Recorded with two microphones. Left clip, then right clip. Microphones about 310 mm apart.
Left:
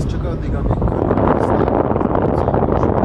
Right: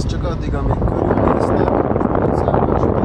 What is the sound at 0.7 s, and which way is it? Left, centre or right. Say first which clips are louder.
Vehicle: even; centre.